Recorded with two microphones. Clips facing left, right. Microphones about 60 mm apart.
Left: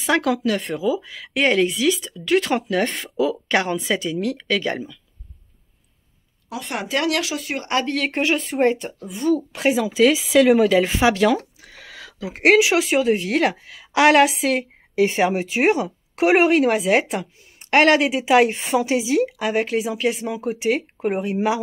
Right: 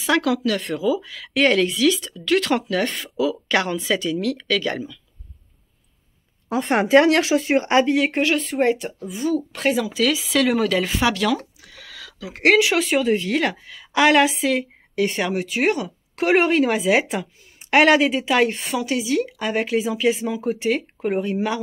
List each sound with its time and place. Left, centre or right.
0.0 s speech: left
6.5 s speech: right
7.8 s speech: centre
8.1 s speech: centre
15.0 s speech: centre
18.7 s speech: left
19.3 s speech: centre